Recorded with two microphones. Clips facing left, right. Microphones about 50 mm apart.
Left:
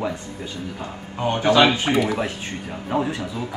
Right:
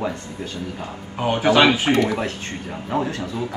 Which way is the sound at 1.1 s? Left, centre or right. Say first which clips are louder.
Right 1 dB; centre.